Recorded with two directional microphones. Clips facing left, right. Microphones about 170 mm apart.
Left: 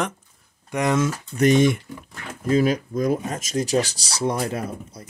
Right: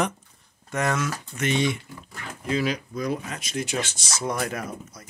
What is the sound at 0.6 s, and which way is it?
Speech, 15° left (ahead or behind).